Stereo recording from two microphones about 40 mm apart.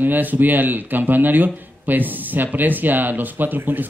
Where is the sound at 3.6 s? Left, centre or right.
Right.